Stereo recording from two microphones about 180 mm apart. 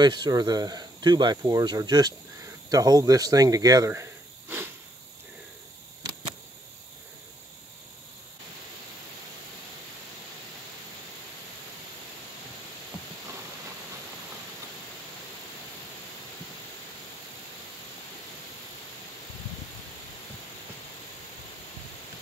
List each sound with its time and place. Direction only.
0.0 s speech: 25° right (ahead or behind)